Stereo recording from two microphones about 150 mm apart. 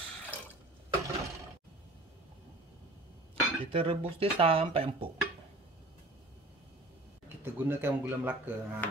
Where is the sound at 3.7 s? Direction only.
40° right (ahead or behind).